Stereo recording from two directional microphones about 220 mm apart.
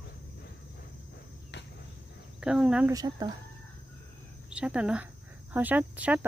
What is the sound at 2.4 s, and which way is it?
Speech, 5° right (ahead or behind).